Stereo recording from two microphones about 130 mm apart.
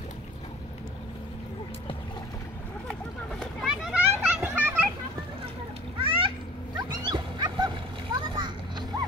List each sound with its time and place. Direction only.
3.6 s children playing: 10° right (ahead or behind)
5.9 s a sound: 40° right (ahead or behind)
6.8 s dog: 35° right (ahead or behind)